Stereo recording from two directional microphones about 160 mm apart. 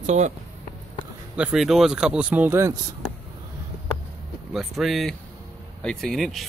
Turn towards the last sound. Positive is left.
turn(degrees=0)  # may be behind; listen again after turning